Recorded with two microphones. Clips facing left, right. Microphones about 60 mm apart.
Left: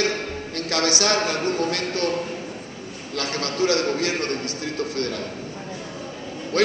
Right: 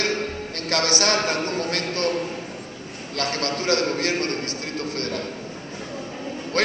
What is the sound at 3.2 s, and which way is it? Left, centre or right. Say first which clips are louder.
A man's voice: left 2 dB; right.